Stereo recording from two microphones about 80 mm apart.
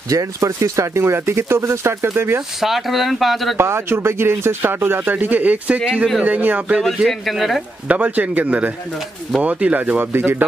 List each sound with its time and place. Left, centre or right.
0.1 s speech: right
2.6 s speech: centre
3.5 s speech: right
7.1 s speech: centre
7.9 s speech: right